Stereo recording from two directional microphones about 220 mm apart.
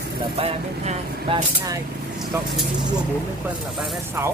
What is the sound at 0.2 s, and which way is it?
Speech, 25° right (ahead or behind).